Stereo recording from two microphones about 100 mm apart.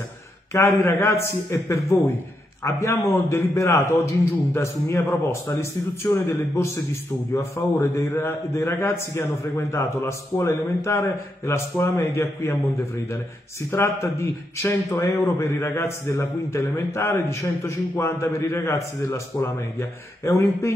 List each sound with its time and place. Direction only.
0.5 s a man's voice: 30° left (ahead or behind)